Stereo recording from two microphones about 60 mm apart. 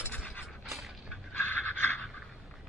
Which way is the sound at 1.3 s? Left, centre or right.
Left.